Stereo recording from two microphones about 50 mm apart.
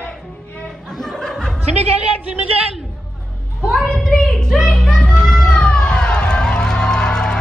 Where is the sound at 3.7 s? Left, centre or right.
Centre.